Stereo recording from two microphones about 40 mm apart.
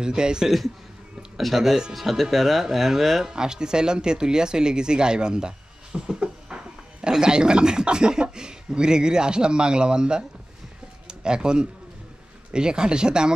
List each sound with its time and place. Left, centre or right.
0.0 s speech: centre
1.3 s speech: centre
3.3 s speech: centre